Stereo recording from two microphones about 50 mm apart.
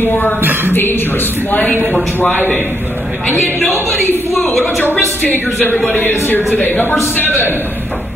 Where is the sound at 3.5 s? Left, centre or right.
Left.